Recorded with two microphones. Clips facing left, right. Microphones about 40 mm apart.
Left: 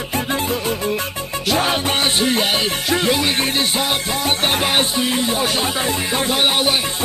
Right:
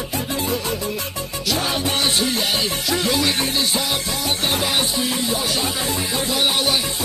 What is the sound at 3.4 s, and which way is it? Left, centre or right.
Music, left.